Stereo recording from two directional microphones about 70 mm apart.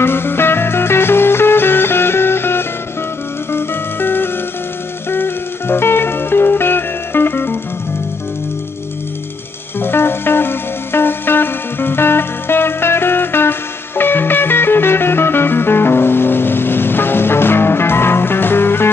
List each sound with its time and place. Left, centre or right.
0.0 s music: left
9.8 s music: left